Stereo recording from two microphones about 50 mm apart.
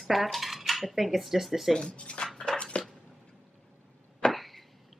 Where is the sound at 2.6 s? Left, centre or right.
Left.